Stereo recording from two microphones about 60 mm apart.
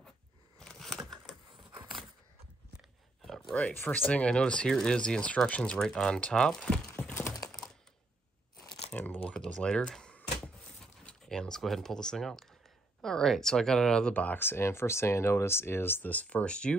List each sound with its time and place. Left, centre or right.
0.6 s a sound: centre
3.3 s a sound: centre
3.7 s speech: left
4.1 s speech: centre
5.6 s speech: centre
8.9 s a sound: left
9.4 s speech: centre
14.1 s speech: left
14.4 s speech: left; by 16.7 s centre